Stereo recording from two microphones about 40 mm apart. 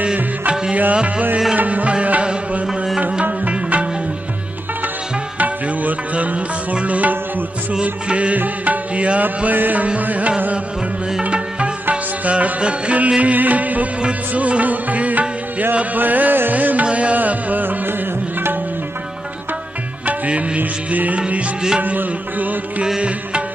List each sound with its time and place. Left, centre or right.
0.0 s music: right
1.6 s music: right
3.3 s music: right
5.4 s music: right
8.4 s tabla: right
9.5 s music: right
20.1 s music: right